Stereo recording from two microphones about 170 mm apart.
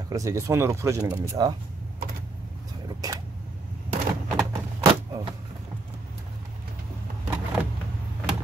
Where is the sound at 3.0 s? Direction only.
20° right (ahead or behind).